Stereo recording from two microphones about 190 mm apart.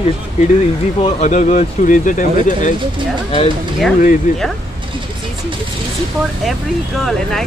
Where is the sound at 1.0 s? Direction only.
40° left (ahead or behind).